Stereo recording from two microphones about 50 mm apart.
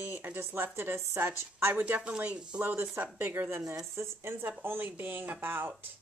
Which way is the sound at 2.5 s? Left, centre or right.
Right.